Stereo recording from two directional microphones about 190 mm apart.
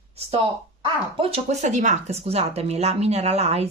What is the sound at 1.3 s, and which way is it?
Speech, 40° right (ahead or behind).